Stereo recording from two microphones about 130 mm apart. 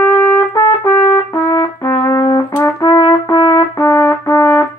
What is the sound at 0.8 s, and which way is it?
Brass instrument, 25° left (ahead or behind).